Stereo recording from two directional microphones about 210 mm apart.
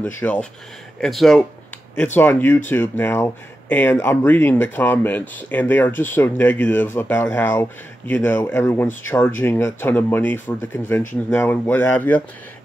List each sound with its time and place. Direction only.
0.2 s speech: 5° left (ahead or behind)